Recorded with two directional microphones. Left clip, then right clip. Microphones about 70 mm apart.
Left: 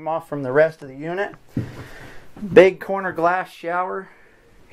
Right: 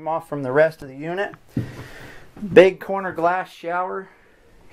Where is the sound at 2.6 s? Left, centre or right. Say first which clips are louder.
Even; centre.